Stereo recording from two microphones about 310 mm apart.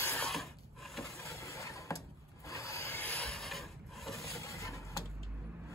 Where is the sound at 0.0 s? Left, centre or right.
Centre.